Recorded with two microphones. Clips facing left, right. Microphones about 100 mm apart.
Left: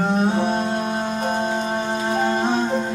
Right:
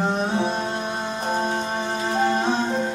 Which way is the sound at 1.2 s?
5° left (ahead or behind).